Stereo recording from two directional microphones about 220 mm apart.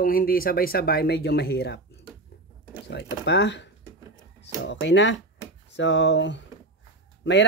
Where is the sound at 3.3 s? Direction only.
50° left (ahead or behind).